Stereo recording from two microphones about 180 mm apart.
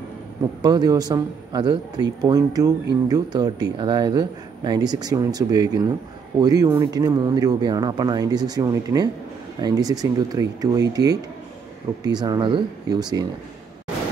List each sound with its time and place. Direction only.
0.6 s speech: 20° right (ahead or behind)